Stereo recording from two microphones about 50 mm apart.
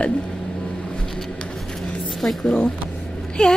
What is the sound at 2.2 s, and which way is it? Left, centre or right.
Speech, centre.